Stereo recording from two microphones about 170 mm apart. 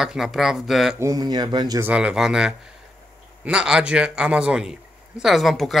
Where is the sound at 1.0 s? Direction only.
20° right (ahead or behind).